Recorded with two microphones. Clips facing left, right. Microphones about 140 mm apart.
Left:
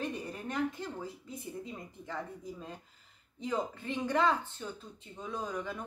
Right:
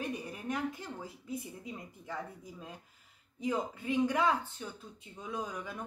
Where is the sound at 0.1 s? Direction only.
10° right (ahead or behind).